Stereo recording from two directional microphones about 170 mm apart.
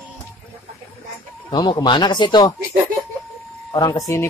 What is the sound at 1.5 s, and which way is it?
Speech, 25° left (ahead or behind).